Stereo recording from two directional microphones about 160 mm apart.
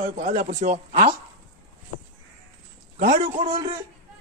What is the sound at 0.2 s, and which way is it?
Speech, 50° right (ahead or behind).